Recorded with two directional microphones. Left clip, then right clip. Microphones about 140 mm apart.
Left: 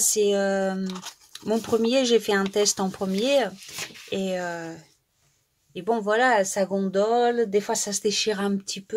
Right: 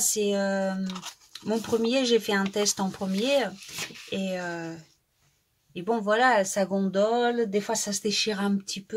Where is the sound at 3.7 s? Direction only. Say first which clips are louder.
Left 1 dB; 30° left (ahead or behind).